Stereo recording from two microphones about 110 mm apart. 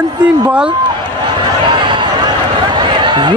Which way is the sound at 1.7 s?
45° right (ahead or behind).